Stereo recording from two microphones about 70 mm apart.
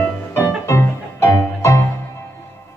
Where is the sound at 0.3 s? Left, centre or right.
Left.